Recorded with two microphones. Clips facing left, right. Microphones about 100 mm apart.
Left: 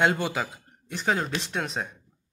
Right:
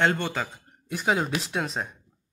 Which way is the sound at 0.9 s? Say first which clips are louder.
Right 2 dB; 5° right (ahead or behind).